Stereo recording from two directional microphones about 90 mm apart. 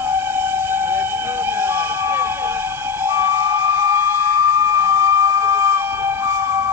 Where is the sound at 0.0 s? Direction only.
20° right (ahead or behind).